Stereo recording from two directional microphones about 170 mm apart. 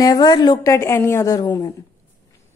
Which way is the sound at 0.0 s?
25° left (ahead or behind).